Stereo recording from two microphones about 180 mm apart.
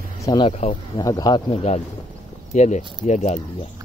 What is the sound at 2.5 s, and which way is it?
Speech, 40° left (ahead or behind).